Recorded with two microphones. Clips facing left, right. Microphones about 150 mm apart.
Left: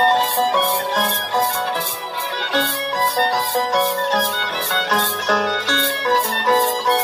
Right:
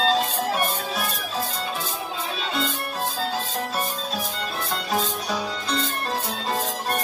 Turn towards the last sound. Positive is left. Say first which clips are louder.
# left 9 dB
turn(degrees=85)